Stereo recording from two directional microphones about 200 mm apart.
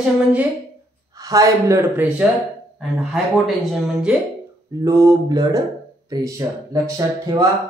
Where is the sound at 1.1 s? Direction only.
15° right (ahead or behind).